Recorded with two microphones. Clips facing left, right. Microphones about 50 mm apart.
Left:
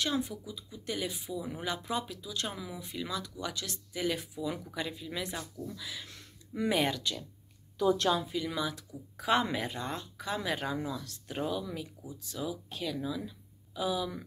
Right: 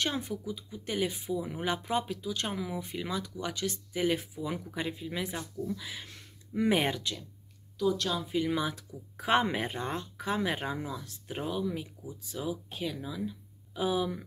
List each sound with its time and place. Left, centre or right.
0.0 s speech: right
6.0 s a sound: centre
7.0 s speech: centre
7.9 s speech: left
8.5 s speech: right; by 13.4 s centre
13.7 s speech: right